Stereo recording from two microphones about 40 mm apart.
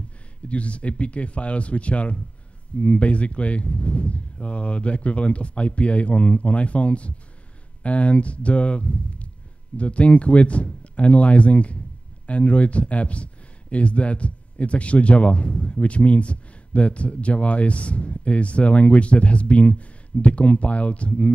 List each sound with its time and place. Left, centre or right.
0.5 s speech: left